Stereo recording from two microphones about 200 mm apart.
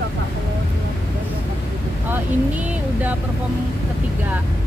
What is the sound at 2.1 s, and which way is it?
Speech, 10° right (ahead or behind).